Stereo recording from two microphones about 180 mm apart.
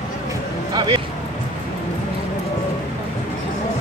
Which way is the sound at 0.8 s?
25° right (ahead or behind).